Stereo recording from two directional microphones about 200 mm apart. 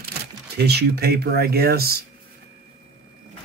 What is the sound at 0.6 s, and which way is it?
Speech, 55° right (ahead or behind).